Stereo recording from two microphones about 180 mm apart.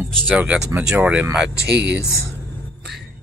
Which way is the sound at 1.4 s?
70° right (ahead or behind).